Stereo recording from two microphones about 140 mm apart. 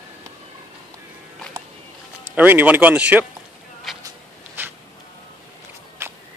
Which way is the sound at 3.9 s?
Centre (ahead or behind).